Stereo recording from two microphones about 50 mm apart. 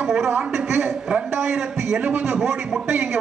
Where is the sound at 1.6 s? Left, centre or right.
Centre.